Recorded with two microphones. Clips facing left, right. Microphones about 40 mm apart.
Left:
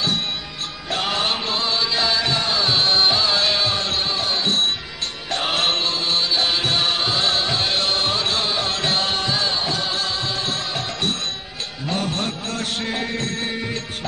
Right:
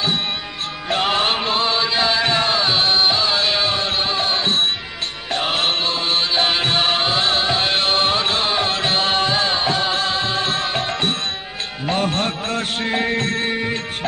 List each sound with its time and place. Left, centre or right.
0.8 s music: right
5.3 s music: centre
5.9 s music: right